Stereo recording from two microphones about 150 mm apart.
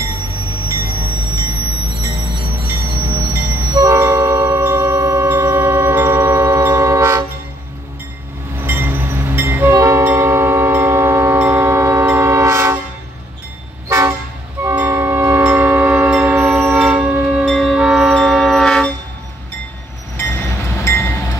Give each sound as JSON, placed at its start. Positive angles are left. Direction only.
{"t": 0.0, "sound": "train", "side_deg": -20}
{"t": 2.6, "sound": "train", "side_deg": -15}
{"t": 8.6, "sound": "train", "side_deg": -10}
{"t": 13.8, "sound": "toot", "side_deg": -20}
{"t": 14.6, "sound": "train", "side_deg": -15}
{"t": 20.2, "sound": "train", "side_deg": 20}